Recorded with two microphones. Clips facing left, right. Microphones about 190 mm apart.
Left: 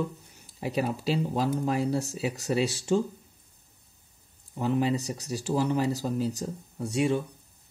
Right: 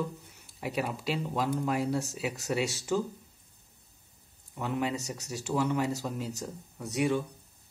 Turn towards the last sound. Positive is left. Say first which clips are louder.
# left 3 dB
turn(degrees=30)  # may be behind; listen again after turning